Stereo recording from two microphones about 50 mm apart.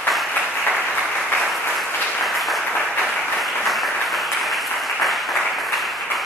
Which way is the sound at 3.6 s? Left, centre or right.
Centre.